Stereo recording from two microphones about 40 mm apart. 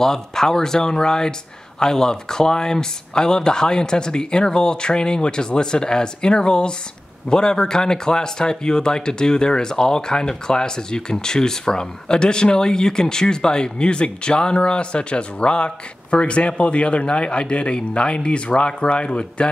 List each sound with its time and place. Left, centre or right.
0.0 s speech: centre